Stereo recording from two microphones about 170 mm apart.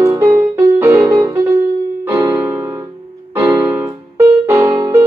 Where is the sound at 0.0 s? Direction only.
20° right (ahead or behind).